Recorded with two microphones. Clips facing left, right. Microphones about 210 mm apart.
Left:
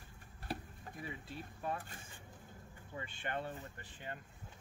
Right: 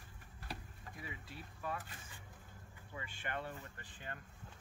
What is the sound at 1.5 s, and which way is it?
Speech, 30° left (ahead or behind).